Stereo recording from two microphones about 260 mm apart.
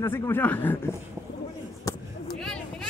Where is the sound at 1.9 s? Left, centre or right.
Centre.